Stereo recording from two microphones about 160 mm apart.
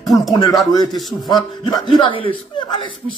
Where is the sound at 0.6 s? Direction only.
25° left (ahead or behind).